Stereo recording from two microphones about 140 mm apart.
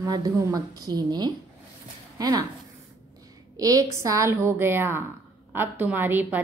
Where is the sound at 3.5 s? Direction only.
25° right (ahead or behind).